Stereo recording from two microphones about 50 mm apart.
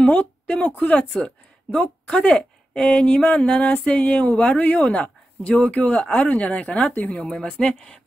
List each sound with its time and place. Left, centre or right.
0.0 s a woman's voice: left
7.6 s speech: centre